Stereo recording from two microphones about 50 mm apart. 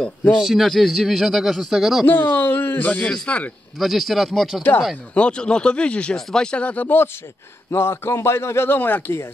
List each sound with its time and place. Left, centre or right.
0.4 s a man's voice: centre
2.0 s speech: left
3.3 s speech: left
3.8 s speech: centre
5.1 s speech: left
7.7 s a man's voice: left
8.7 s speech: left